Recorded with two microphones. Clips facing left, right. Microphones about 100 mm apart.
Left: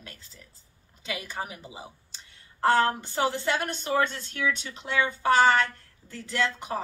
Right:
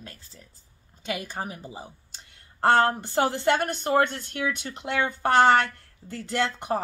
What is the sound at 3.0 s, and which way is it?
Speech, 50° right (ahead or behind).